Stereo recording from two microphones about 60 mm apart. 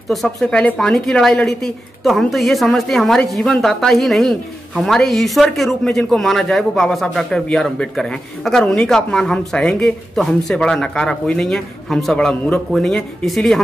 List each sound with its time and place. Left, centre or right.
0.4 s a man's voice: centre
10.1 s a man's voice: centre